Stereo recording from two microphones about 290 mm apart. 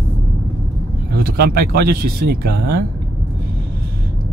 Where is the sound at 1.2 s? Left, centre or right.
Right.